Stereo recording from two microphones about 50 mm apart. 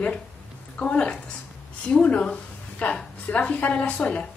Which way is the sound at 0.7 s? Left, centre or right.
Left.